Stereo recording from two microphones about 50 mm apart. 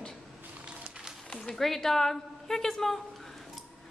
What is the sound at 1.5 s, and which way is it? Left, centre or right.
A woman's voice, centre.